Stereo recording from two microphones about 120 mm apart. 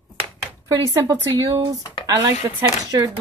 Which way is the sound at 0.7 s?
30° right (ahead or behind).